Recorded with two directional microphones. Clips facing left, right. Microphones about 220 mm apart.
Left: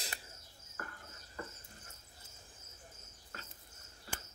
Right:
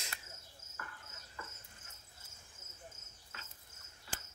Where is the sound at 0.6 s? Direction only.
20° right (ahead or behind).